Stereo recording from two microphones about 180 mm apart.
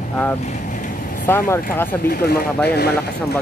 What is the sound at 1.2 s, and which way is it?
Speech, 15° left (ahead or behind).